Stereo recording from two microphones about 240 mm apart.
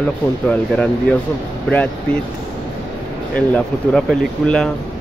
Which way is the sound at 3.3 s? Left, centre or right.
Centre.